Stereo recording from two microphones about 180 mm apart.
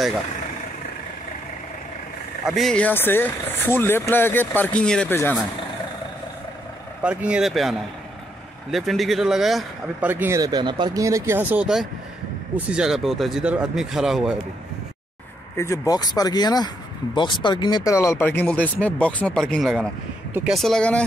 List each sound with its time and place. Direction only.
2.4 s speech: centre (ahead or behind)
7.0 s speech: 5° right (ahead or behind)
8.7 s speech: centre (ahead or behind)
10.0 s speech: 10° right (ahead or behind)
15.5 s speech: 15° left (ahead or behind)